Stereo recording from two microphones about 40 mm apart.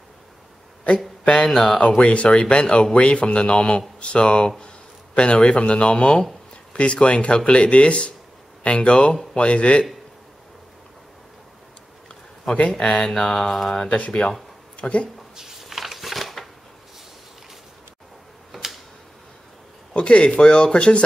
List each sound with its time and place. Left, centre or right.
1.2 s speech: left
1.5 s mantra: centre
1.8 s speech: left
12.5 s speech: left
13.2 s mantra: centre
13.8 s speech: left
15.3 s a sound: centre
18.5 s a sound: centre
19.9 s speech: left